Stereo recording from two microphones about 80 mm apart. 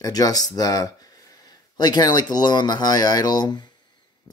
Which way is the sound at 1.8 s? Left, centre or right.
Left.